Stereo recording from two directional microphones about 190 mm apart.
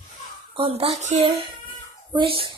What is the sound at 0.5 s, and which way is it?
A child's voice, 30° right (ahead or behind).